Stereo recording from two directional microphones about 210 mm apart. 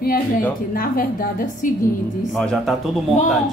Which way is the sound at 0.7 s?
45° left (ahead or behind).